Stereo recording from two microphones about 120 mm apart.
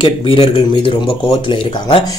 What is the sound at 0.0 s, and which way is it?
Speech, 45° left (ahead or behind).